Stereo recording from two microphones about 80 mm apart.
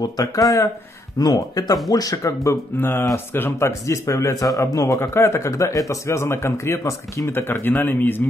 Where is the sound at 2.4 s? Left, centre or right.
Left.